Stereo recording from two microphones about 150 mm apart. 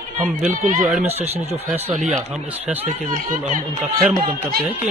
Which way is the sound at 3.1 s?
60° right (ahead or behind).